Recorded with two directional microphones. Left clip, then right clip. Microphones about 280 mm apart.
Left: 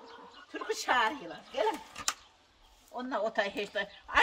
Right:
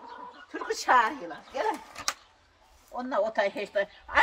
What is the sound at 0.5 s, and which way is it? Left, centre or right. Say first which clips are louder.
A woman's voice: right 6 dB; centre.